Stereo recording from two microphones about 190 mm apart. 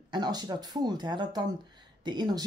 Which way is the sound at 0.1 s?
20° right (ahead or behind).